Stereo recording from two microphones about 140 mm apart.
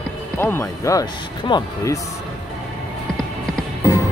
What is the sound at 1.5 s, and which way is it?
Speech, 35° left (ahead or behind).